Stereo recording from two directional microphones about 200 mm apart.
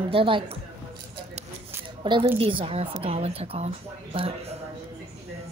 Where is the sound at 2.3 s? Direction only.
30° right (ahead or behind).